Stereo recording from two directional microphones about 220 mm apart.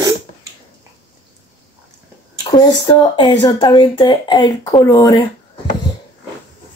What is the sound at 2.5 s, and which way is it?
Speech, 20° left (ahead or behind).